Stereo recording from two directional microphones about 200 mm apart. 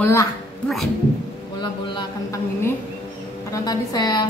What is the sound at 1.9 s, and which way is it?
A woman's voice, 15° left (ahead or behind).